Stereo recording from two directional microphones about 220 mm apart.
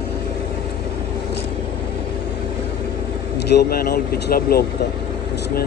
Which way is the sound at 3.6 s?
45° left (ahead or behind).